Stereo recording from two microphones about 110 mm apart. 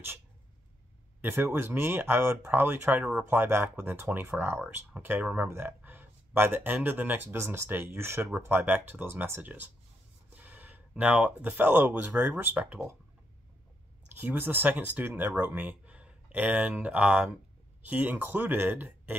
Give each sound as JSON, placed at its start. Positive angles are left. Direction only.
{"t": 1.2, "sound": "speech", "side_deg": -20}
{"t": 14.1, "sound": "speech", "side_deg": -20}